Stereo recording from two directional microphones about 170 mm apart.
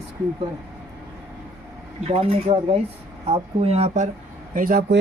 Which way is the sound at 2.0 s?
35° right (ahead or behind).